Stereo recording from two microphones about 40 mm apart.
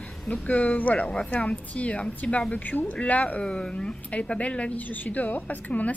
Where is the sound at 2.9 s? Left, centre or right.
Left.